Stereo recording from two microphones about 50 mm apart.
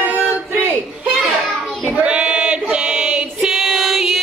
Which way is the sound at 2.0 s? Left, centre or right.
Centre.